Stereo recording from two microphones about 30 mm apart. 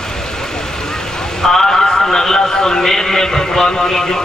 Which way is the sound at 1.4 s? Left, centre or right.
Centre.